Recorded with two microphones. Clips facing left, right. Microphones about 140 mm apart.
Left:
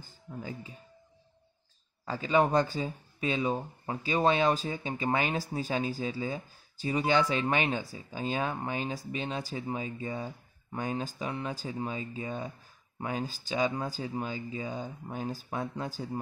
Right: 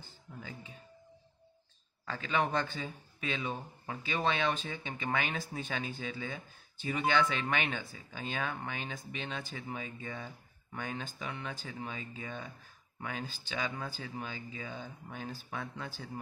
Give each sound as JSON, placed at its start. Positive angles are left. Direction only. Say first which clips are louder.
{"t": 2.2, "sound": "speech", "louder": "left 7 dB", "side_deg": 35}